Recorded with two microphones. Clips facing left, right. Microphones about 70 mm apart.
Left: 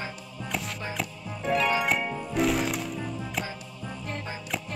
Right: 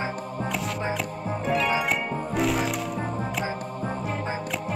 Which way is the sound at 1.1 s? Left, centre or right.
Right.